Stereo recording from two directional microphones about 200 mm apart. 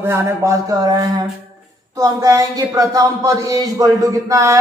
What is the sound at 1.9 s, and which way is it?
A man's voice, 15° right (ahead or behind).